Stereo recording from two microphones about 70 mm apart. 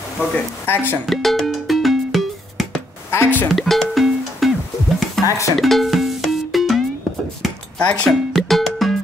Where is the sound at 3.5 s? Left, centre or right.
Centre.